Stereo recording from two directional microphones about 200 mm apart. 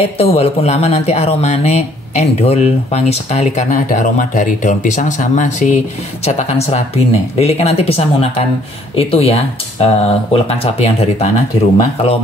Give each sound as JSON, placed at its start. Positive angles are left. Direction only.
{"t": 0.2, "sound": "speech", "side_deg": 30}